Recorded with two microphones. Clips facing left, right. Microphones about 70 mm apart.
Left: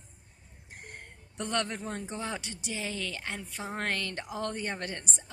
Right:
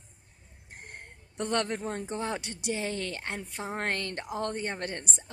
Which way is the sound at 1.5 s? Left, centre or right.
Right.